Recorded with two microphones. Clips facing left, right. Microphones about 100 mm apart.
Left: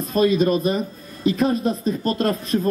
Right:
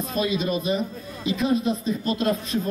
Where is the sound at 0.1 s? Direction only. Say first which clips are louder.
Left 8 dB; 45° left (ahead or behind).